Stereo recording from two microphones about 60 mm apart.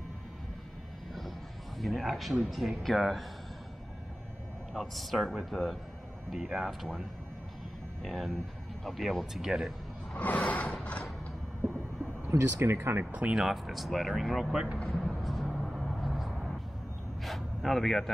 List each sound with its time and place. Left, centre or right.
1.8 s speech: centre
4.7 s speech: centre
8.0 s speech: centre
10.1 s a sound: left
12.3 s speech: right
13.3 s speech: centre
14.8 s a sound: centre
15.0 s vehicle: centre
17.2 s a sound: centre